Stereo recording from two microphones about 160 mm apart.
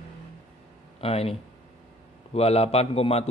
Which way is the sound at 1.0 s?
40° left (ahead or behind).